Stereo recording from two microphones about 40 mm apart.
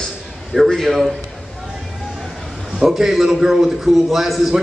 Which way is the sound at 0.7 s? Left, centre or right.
Centre.